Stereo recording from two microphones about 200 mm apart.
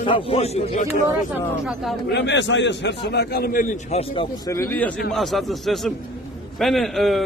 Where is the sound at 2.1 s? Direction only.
60° left (ahead or behind); by 4.0 s 40° left (ahead or behind).